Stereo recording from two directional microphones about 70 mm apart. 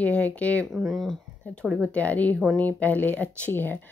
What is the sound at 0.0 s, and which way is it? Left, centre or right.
Speech, centre.